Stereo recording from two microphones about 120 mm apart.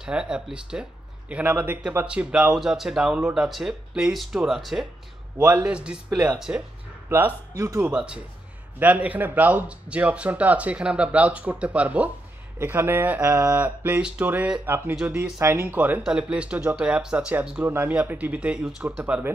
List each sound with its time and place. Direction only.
0.0 s speech: 5° right (ahead or behind)
5.4 s speech: 20° right (ahead or behind)
5.7 s speech: 10° right (ahead or behind)
6.0 s a man's voice: 25° right (ahead or behind)
7.8 s speech: 10° right (ahead or behind)